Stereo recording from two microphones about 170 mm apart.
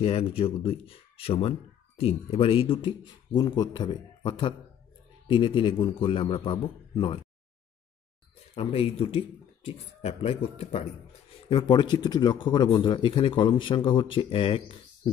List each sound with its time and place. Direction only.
0.0 s speech: 35° left (ahead or behind)
8.5 s speech: 30° left (ahead or behind)
11.4 s speech: 30° left (ahead or behind)